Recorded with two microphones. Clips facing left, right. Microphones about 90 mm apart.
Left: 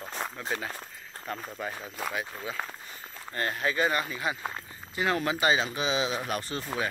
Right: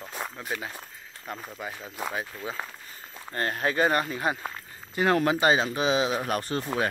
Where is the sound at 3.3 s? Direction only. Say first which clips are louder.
Right 3 dB; 40° right (ahead or behind).